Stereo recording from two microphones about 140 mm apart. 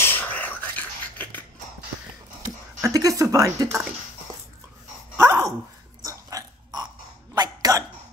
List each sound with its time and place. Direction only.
0.0 s a sound: 15° left (ahead or behind)
2.8 s speech: 25° right (ahead or behind)
5.1 s dog: 20° right (ahead or behind)
7.3 s hiccup: 25° right (ahead or behind)